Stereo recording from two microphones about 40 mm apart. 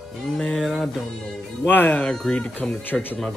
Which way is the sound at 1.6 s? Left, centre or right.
Left.